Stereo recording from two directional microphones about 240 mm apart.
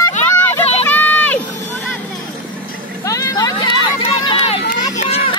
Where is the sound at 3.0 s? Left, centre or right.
Centre.